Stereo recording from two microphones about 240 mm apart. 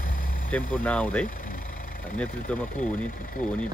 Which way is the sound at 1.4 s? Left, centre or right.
Left.